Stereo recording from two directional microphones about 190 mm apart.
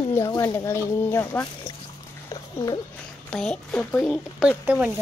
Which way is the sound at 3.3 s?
5° left (ahead or behind).